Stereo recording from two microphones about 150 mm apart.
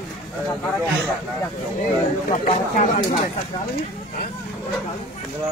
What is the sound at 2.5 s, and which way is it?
Speech, 55° left (ahead or behind).